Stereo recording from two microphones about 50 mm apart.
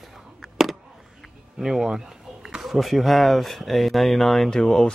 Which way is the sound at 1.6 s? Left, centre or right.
Centre.